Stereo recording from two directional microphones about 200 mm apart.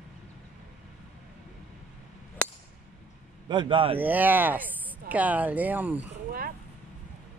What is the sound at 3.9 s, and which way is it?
Speech, 10° right (ahead or behind).